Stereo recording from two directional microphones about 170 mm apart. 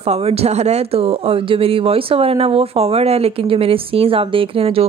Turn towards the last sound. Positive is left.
turn(degrees=-35)  # may be behind; listen again after turning